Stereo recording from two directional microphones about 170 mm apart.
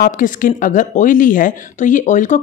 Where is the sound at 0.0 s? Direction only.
50° left (ahead or behind).